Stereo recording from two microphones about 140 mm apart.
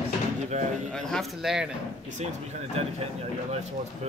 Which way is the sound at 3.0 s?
50° right (ahead or behind).